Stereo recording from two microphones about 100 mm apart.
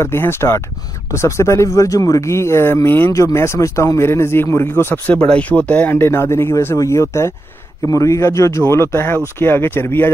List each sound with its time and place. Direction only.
0.0 s speech: 25° left (ahead or behind)
5.1 s speech: 10° left (ahead or behind)